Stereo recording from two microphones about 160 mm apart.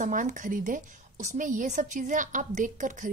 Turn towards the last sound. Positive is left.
turn(degrees=-55)  # may be behind; listen again after turning